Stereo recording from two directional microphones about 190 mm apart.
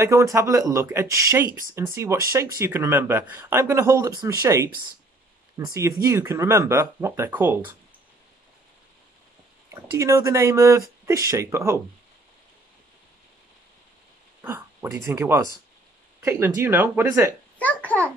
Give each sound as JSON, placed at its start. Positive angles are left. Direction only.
{"t": 0.0, "sound": "speech", "side_deg": -15}
{"t": 9.9, "sound": "speech", "side_deg": -15}
{"t": 14.4, "sound": "speech", "side_deg": -15}
{"t": 17.6, "sound": "a child's voice", "side_deg": 10}